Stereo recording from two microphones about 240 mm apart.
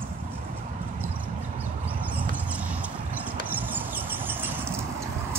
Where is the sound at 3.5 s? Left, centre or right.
Centre.